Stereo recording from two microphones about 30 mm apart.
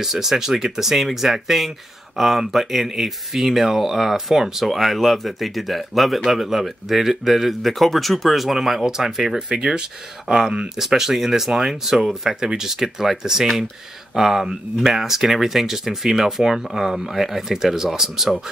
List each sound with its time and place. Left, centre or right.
0.0 s speech: centre
7.6 s speech: centre
9.5 s speech: right